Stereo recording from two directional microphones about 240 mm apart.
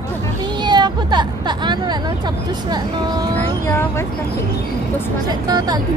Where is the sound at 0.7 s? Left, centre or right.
Centre.